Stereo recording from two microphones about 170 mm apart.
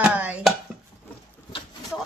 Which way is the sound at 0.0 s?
10° right (ahead or behind).